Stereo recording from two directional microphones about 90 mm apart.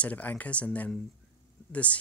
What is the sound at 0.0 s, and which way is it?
Speech, 15° left (ahead or behind).